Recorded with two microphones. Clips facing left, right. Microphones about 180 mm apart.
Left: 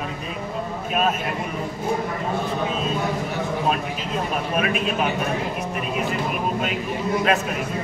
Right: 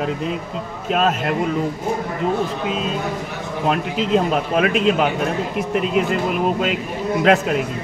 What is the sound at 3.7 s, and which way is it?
A man's voice, 85° right.